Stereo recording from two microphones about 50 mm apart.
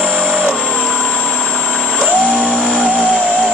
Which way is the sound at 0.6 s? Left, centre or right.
Centre.